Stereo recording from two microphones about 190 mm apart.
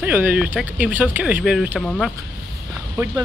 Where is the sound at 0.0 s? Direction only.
10° right (ahead or behind).